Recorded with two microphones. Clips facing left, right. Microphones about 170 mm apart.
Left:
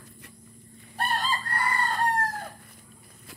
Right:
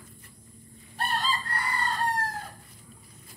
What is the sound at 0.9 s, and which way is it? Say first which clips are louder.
Chicken: left 1 dB; 50° left (ahead or behind).